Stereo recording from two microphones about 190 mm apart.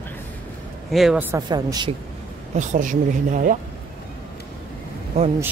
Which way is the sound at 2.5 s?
40° right (ahead or behind).